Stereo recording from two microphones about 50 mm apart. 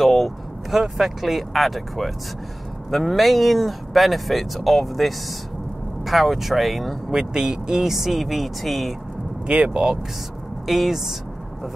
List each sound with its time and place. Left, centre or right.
0.0 s speech: centre
7.1 s speech: centre
9.5 s speech: centre
10.7 s speech: centre